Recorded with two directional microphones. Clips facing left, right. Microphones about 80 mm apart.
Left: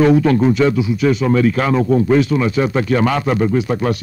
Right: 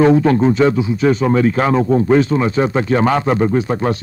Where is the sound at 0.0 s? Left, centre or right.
Right.